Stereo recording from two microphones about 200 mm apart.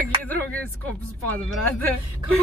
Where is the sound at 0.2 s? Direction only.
10° left (ahead or behind).